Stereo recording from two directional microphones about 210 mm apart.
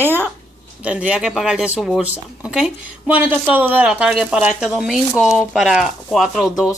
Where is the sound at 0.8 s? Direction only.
5° right (ahead or behind).